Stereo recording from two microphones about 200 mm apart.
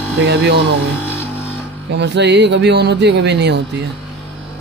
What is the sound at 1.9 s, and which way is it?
Speech, 60° right (ahead or behind).